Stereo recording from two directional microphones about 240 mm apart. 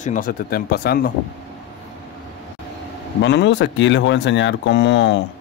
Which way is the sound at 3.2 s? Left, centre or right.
Left.